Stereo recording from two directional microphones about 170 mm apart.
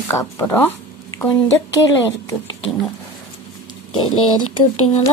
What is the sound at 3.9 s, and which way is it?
Speech, 30° left (ahead or behind).